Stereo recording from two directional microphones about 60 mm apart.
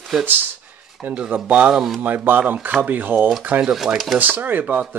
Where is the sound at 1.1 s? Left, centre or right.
Centre.